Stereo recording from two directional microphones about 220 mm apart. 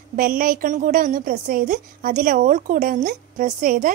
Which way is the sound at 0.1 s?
40° right (ahead or behind).